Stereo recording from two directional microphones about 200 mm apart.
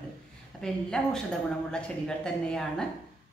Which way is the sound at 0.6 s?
5° left (ahead or behind).